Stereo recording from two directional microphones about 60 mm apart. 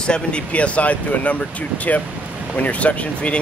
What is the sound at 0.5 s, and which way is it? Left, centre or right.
Speech, left.